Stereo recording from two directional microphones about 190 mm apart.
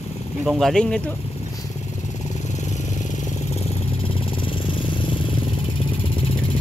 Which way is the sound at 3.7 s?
30° left (ahead or behind).